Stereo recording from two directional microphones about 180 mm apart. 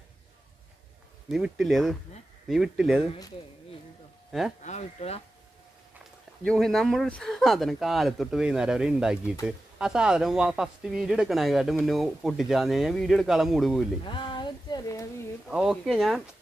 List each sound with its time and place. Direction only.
1.3 s speech: centre (ahead or behind)
4.6 s speech: 35° left (ahead or behind)
6.4 s speech: 5° left (ahead or behind)
14.0 s a sound: 25° left (ahead or behind)
15.4 s speech: centre (ahead or behind)